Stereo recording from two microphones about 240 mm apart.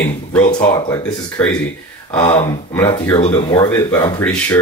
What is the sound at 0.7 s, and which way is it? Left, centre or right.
Speech, centre.